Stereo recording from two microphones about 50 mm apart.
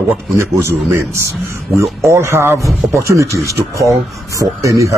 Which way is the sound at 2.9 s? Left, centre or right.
Right.